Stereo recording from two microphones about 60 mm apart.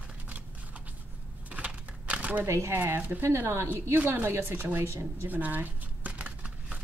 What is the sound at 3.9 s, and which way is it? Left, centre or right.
A woman's voice, right.